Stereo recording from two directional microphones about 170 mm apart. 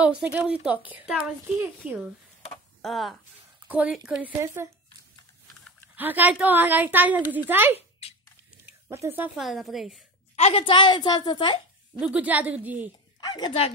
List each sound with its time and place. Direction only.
0.0 s a woman's voice: 5° right (ahead or behind)
5.9 s a woman's voice: 10° right (ahead or behind)
10.3 s a woman's voice: 35° left (ahead or behind)
12.0 s a woman's voice: 5° right (ahead or behind)
13.2 s a woman's voice: 25° left (ahead or behind)